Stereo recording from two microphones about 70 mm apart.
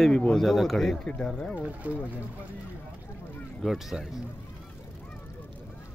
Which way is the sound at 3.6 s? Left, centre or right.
Centre.